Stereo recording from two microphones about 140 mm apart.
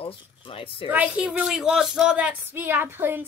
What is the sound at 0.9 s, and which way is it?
Speech, 10° right (ahead or behind).